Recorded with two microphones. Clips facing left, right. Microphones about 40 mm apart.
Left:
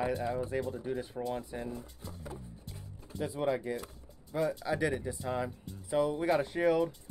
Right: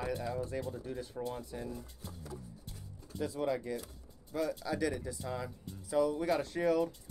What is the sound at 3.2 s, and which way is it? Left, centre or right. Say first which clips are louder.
Speech: left 2 dB; left.